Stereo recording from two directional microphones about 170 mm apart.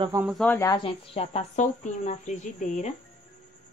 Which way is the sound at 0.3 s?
5° left (ahead or behind).